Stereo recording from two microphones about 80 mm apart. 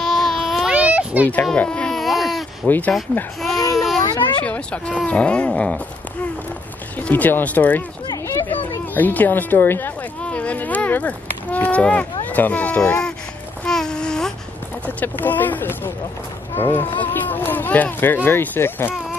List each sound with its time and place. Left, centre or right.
0.0 s baby cry: centre
0.7 s baby cry: centre
1.2 s baby cry: centre
2.6 s speech: centre
3.7 s baby cry: centre
4.4 s speech: centre
7.0 s speech: left
8.1 s a sound: left
8.5 s speech: left
10.2 s a sound: centre
15.0 s speech: left
16.5 s music: left
17.0 s speech: left